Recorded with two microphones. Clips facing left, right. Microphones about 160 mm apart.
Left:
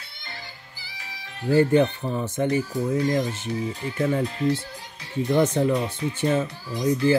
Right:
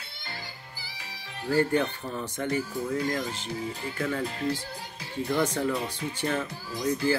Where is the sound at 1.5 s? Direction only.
20° left (ahead or behind).